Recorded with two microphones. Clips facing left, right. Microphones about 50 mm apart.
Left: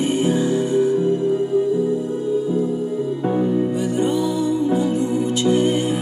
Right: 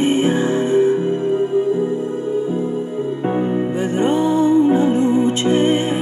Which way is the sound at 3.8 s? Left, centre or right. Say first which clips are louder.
Right 3 dB; right.